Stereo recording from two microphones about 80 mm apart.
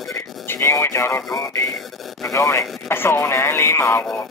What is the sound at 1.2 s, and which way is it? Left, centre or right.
Speech, left.